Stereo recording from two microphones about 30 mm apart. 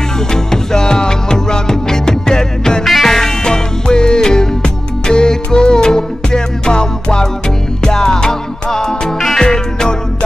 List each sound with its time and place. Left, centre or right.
0.3 s music: centre
2.8 s music: centre
3.4 s music: left